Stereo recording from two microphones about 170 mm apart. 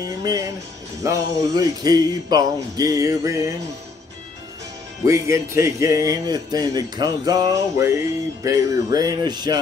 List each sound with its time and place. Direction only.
0.0 s speech: 20° right (ahead or behind)
5.0 s speech: 15° right (ahead or behind)